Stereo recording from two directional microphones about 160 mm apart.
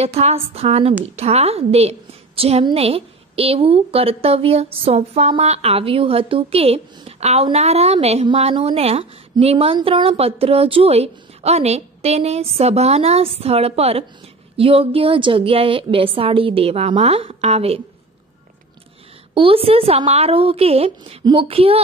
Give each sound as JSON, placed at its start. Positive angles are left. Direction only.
{"t": 0.0, "sound": "a woman's voice", "side_deg": -40}
{"t": 19.3, "sound": "a woman's voice", "side_deg": -35}